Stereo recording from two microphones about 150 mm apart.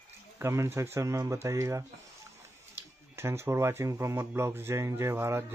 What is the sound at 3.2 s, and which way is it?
Speech, 15° right (ahead or behind).